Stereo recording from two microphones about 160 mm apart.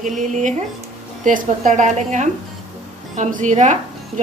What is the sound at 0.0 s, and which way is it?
A woman's voice, 50° right (ahead or behind).